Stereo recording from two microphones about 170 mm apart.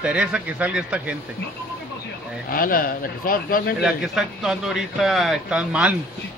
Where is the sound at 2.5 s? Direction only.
55° left (ahead or behind).